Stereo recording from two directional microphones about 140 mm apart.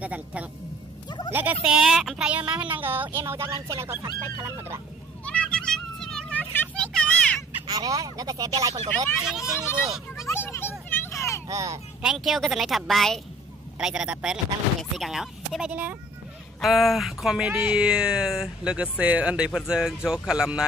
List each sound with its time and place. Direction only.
0.0 s speech: 10° right (ahead or behind)
1.0 s a sound: 30° left (ahead or behind)
1.3 s speech: 15° right (ahead or behind)
5.2 s children playing: 10° left (ahead or behind)
7.6 s speech: 25° right (ahead or behind)
9.2 s speech: 5° right (ahead or behind)
10.2 s a sound: 20° left (ahead or behind)
11.4 s speech: 25° right (ahead or behind)
12.0 s speech: 5° right (ahead or behind)